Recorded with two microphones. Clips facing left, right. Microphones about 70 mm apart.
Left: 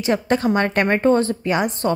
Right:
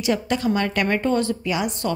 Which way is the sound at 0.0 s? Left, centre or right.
Left.